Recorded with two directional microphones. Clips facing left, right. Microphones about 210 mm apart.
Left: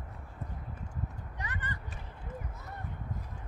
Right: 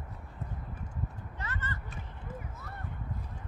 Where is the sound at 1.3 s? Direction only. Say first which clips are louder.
Even; 15° left (ahead or behind).